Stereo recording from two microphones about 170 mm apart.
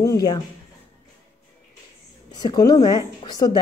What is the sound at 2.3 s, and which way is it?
A woman's voice, 25° left (ahead or behind).